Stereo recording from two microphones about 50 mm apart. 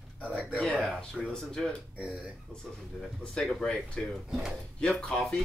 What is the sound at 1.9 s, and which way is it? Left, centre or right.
Speech, right.